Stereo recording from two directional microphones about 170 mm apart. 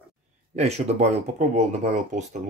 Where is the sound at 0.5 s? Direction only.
40° right (ahead or behind).